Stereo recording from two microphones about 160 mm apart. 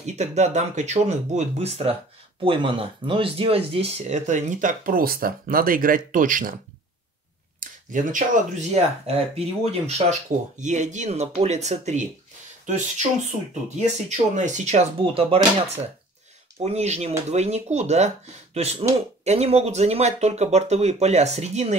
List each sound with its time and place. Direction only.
0.0 s speech: 45° right (ahead or behind)
7.6 s speech: 55° right (ahead or behind); by 15.4 s 35° right (ahead or behind)
16.6 s speech: 40° right (ahead or behind)